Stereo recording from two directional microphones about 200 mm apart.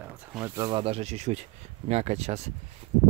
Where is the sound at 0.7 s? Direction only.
25° right (ahead or behind).